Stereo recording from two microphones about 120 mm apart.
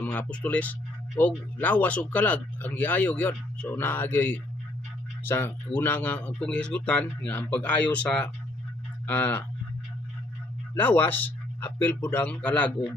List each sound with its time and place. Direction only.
0.0 s speech: 15° left (ahead or behind)
10.8 s speech: 15° left (ahead or behind)